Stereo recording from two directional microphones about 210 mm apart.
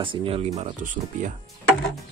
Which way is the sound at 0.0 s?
25° right (ahead or behind).